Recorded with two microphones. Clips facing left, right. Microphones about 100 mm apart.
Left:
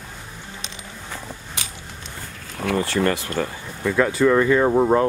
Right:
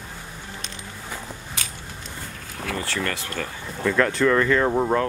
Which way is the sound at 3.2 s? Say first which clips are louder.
Left 5 dB; 15° left (ahead or behind).